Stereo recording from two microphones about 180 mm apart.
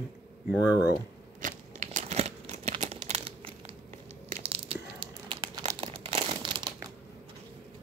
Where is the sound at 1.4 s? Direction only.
40° right (ahead or behind); by 6.7 s 25° right (ahead or behind).